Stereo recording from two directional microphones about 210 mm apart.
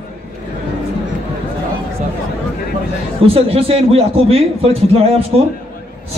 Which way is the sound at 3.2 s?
25° right (ahead or behind).